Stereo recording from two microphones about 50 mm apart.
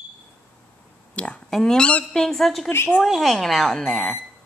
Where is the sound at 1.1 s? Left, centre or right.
Left.